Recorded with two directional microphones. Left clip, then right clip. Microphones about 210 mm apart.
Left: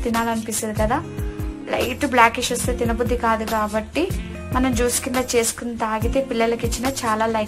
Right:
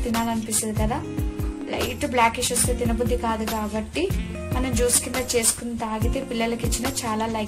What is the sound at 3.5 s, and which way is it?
A woman's voice, 15° left (ahead or behind).